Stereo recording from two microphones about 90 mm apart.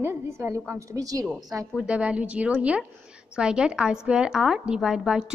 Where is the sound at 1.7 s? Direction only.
15° right (ahead or behind).